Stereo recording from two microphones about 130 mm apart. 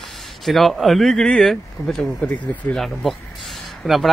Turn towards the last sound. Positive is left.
turn(degrees=0)  # may be behind; listen again after turning